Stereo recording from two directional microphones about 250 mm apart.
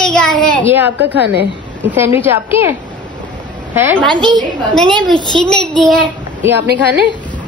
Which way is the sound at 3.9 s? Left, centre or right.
Centre.